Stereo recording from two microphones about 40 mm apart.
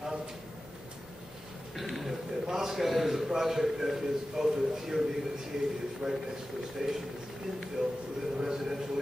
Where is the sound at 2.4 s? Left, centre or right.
Centre.